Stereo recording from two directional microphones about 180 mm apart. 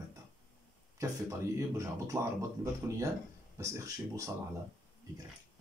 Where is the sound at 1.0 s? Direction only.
20° right (ahead or behind).